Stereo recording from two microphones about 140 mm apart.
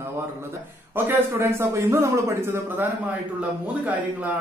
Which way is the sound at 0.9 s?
15° right (ahead or behind).